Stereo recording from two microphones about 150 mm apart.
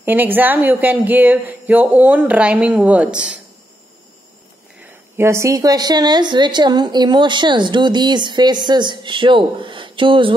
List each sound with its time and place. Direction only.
0.0 s speech: 10° right (ahead or behind)
5.1 s speech: 20° right (ahead or behind); by 10.3 s 35° right (ahead or behind)